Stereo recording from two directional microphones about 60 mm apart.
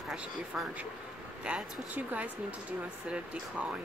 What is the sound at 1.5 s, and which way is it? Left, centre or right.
Speech, centre.